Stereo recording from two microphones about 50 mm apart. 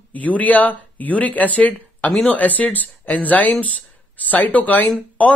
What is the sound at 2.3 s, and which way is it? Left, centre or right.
Speech, left.